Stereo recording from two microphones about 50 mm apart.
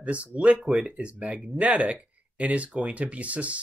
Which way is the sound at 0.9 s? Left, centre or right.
Right.